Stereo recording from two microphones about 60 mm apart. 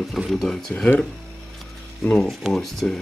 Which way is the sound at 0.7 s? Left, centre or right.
Centre.